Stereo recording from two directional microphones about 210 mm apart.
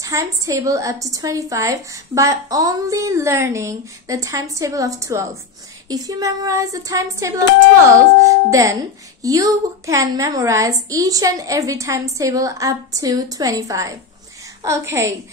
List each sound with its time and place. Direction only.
0.0 s a woman's voice: 15° right (ahead or behind)